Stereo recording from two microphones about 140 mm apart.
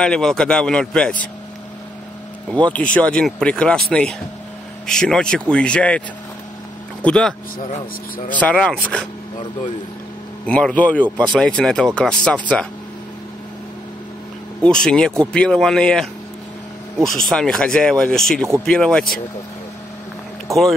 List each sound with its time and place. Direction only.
0.0 s speech: 5° left (ahead or behind)
2.5 s speech: 10° left (ahead or behind)
10.4 s speech: 10° left (ahead or behind)
14.6 s speech: 5° left (ahead or behind)
20.5 s speech: 20° right (ahead or behind)